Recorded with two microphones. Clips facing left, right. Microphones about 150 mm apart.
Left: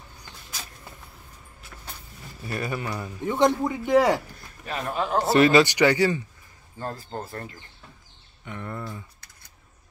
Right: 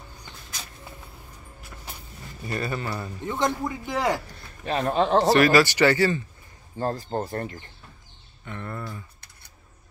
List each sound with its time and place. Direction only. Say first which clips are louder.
2.4 s speech: right 1 dB; 10° left (ahead or behind)
4.6 s speech: right 5 dB; 30° right (ahead or behind)
5.3 s speech: left 6 dB; 20° left (ahead or behind)
6.8 s speech: right 6 dB; 30° right (ahead or behind)
8.5 s speech: even; 15° left (ahead or behind)